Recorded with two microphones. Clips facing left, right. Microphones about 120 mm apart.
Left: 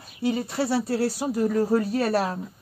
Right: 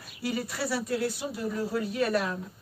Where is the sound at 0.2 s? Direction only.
25° left (ahead or behind).